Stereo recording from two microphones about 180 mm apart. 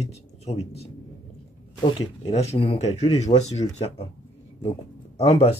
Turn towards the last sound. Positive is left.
turn(degrees=35)  # may be behind; listen again after turning